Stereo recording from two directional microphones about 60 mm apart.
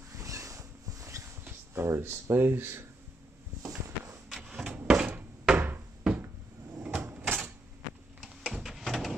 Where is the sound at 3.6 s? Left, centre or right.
Right.